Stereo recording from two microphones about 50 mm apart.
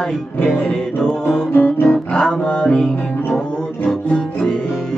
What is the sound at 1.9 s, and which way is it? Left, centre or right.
Music, centre.